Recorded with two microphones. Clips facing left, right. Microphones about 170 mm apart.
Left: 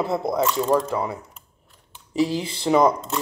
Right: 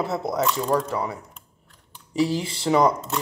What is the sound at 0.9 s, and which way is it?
Speech, 20° left (ahead or behind).